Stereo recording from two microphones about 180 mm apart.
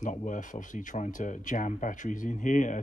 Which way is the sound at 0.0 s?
45° left (ahead or behind).